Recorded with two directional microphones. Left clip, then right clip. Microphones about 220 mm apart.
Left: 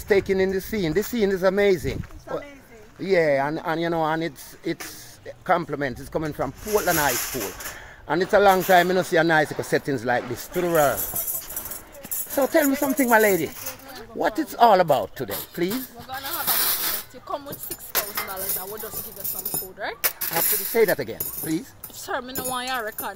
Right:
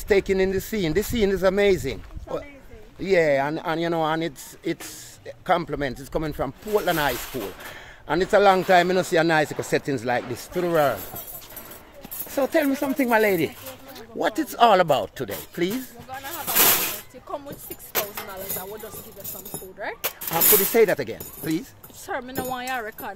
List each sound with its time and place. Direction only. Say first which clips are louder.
0.1 s speech: even; centre (ahead or behind)
7.2 s speech: left 2 dB; 45° left (ahead or behind)
7.7 s speech: right 1 dB; centre (ahead or behind)
12.3 s speech: left 2 dB; 10° left (ahead or behind)
16.4 s snake: right 7 dB; 15° left (ahead or behind)
20.2 s speech: right 10 dB; centre (ahead or behind)